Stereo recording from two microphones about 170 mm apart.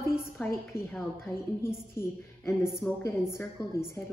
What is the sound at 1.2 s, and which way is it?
A woman's voice, 15° left (ahead or behind).